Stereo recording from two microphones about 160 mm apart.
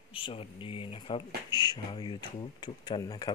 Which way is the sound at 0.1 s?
35° left (ahead or behind).